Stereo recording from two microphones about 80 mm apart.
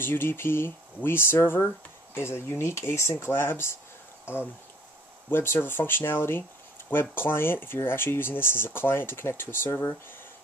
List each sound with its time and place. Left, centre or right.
0.0 s speech: left
5.3 s speech: left